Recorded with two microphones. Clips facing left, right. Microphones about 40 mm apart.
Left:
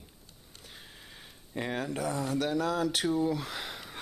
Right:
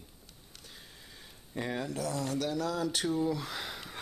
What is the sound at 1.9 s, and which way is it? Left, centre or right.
Speech, left.